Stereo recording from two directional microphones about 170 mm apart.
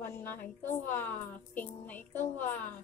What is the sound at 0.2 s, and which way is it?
A woman's voice, 10° left (ahead or behind).